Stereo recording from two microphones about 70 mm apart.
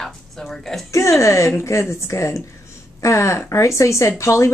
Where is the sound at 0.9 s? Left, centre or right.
Left.